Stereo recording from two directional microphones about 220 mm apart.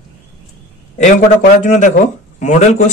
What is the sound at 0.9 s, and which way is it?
Speech, 35° left (ahead or behind).